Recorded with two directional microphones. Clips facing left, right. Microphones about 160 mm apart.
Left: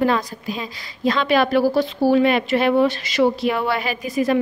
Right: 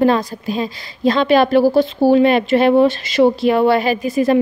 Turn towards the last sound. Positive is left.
turn(degrees=-30)  # may be behind; listen again after turning